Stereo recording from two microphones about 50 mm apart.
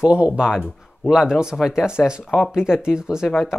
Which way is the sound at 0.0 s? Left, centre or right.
Right.